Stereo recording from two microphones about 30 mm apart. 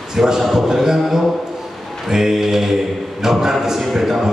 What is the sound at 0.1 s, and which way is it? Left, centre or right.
Speech, centre.